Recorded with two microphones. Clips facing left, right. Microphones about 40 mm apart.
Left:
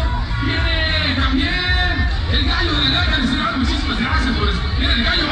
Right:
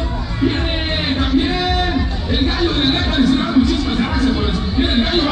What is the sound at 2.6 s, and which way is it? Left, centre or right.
Music, centre.